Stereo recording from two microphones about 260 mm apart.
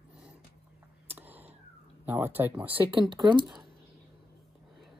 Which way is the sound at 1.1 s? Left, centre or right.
Centre.